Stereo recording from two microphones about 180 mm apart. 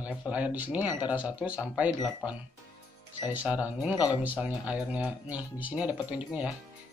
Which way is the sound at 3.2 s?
10° right (ahead or behind).